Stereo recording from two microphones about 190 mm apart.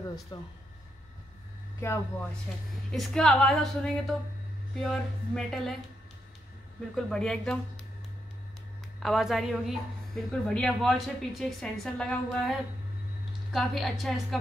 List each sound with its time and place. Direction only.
0.3 s speech: 25° left (ahead or behind)
1.8 s a woman's voice: 15° left (ahead or behind)
7.0 s a woman's voice: 5° left (ahead or behind)
9.0 s a woman's voice: centre (ahead or behind)